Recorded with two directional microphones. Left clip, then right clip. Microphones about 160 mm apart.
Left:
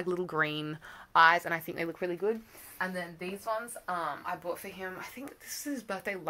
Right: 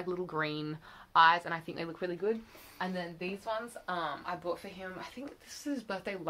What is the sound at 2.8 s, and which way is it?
A woman's voice, centre (ahead or behind).